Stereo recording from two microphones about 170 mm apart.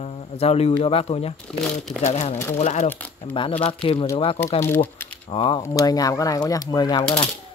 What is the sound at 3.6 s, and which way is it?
Speech, 35° left (ahead or behind).